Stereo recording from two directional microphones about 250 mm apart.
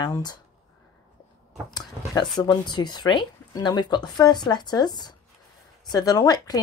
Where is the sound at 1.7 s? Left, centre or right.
Centre.